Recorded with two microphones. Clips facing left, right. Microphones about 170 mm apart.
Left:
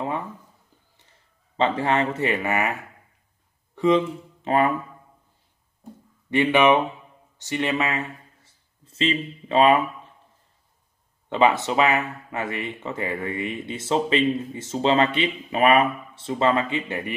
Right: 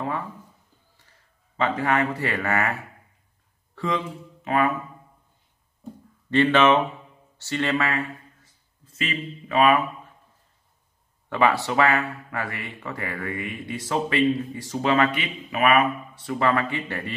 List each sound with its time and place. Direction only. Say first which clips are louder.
1.6 s speech: left 1 dB; 25° left (ahead or behind)
6.3 s speech: even; 15° left (ahead or behind)
11.2 s speech: left 2 dB; 20° left (ahead or behind)